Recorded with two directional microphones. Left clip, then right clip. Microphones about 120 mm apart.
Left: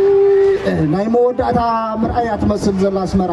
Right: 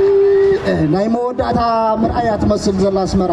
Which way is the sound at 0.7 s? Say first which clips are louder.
Right 2 dB; 15° right (ahead or behind).